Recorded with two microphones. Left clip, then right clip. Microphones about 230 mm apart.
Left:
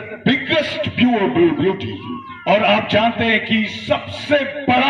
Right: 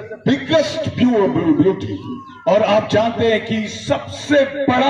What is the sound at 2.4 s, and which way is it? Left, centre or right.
A man's voice, left.